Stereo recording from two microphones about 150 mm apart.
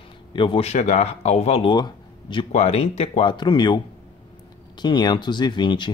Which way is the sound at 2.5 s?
50° left (ahead or behind).